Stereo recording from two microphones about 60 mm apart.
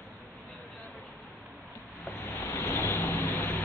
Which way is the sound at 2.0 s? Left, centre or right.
Left.